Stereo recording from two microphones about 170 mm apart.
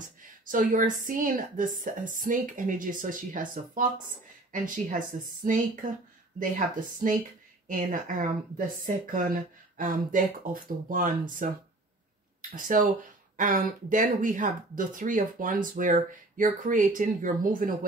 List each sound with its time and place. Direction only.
0.5 s speech: 50° right (ahead or behind)